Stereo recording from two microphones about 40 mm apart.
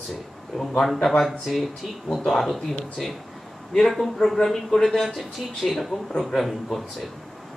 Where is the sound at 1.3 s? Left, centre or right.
Centre.